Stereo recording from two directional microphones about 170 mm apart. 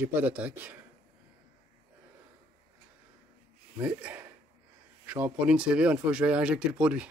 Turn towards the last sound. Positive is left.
turn(degrees=-5)  # may be behind; listen again after turning